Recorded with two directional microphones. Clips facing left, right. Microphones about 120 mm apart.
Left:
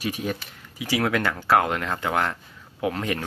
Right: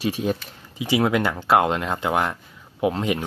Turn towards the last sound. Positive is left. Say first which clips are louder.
# right 4 dB
turn(degrees=-20)  # may be behind; listen again after turning